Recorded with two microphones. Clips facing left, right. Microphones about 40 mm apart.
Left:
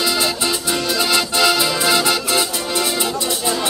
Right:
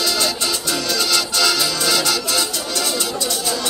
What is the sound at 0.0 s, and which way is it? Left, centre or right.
Music, centre.